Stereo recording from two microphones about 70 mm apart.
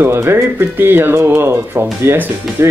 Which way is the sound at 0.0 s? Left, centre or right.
Right.